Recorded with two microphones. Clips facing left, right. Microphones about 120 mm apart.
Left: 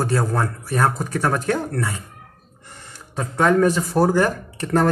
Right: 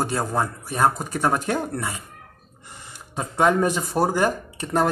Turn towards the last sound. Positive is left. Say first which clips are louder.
# left 3 dB
turn(degrees=-15)  # may be behind; listen again after turning